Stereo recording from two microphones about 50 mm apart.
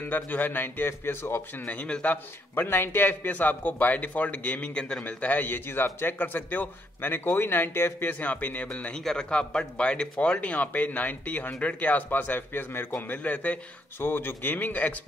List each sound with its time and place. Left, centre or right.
0.0 s speech: left
0.8 s speech: left
1.7 s speech: left
2.5 s speech: left
5.0 s speech: left
8.1 s speech: left
8.9 s speech: centre; by 13.6 s left
13.9 s speech: left